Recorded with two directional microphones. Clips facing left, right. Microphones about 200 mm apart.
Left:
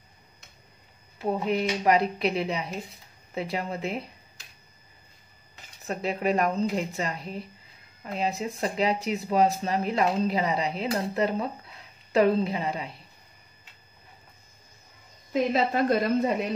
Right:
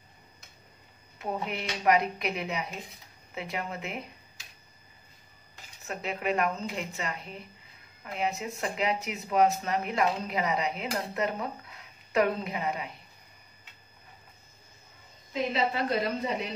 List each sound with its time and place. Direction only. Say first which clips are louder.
1.1 s speech: left 7 dB; 35° left (ahead or behind)
5.9 s speech: left 5 dB; 35° left (ahead or behind)
15.5 s speech: left 4 dB; 45° left (ahead or behind)